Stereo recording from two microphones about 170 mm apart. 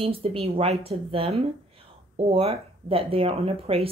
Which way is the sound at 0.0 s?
35° right (ahead or behind).